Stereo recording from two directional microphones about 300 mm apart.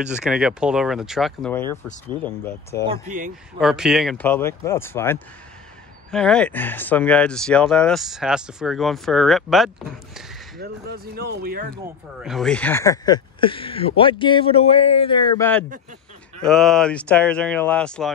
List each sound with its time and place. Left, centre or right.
0.0 s speech: centre
2.9 s speech: right
3.6 s speech: centre
10.6 s speech: right
12.2 s speech: centre